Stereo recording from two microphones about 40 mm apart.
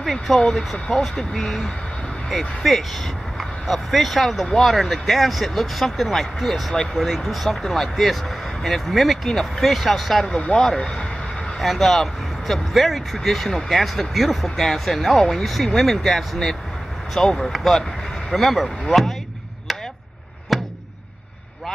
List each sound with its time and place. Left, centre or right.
0.0 s speech: centre
0.4 s speech: centre
10.2 s speech: left
10.6 s speech: centre
11.6 s speech: centre
19.7 s chop: centre
20.5 s a sound: centre